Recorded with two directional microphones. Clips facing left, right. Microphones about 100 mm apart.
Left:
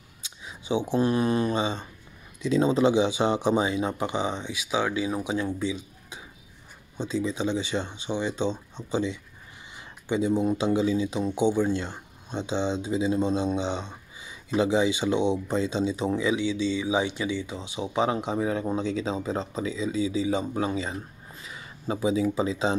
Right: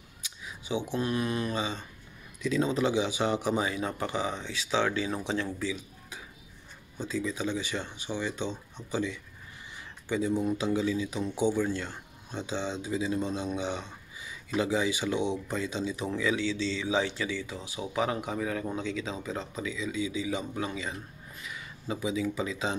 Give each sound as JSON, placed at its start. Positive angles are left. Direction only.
{"t": 0.2, "sound": "speech", "side_deg": 30}